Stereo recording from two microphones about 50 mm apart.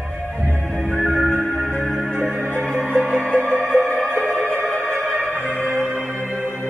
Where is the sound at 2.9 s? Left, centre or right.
Centre.